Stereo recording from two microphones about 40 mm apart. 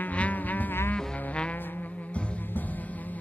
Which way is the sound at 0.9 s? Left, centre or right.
Left.